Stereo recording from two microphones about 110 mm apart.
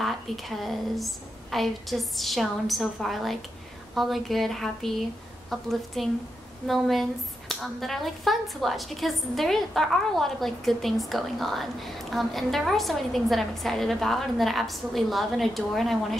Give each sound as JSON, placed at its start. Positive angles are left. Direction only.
{"t": 0.0, "sound": "speech", "side_deg": 0}